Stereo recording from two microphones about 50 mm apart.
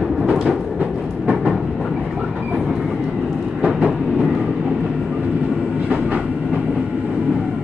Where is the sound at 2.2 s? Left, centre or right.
Centre.